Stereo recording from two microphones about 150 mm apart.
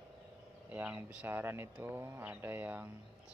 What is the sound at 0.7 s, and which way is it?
Speech, 10° right (ahead or behind).